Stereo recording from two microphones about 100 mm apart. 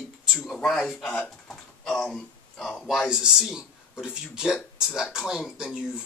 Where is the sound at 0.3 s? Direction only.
5° left (ahead or behind).